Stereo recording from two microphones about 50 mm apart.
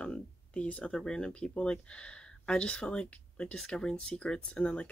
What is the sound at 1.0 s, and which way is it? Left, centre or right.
Speech, centre.